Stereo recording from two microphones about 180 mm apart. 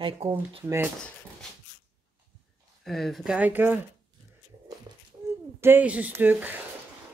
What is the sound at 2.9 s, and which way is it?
Speech, centre (ahead or behind).